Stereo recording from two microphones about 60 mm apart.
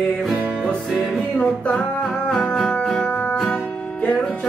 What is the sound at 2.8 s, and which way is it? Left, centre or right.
Music, centre.